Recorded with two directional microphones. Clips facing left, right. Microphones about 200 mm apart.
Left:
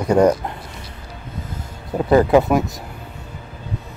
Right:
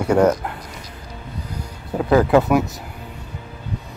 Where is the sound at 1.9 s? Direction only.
15° left (ahead or behind).